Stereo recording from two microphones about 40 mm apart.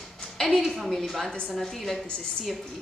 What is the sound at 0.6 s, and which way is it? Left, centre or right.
A woman's voice, centre.